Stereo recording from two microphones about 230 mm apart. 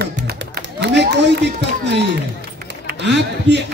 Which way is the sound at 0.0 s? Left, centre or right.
Right.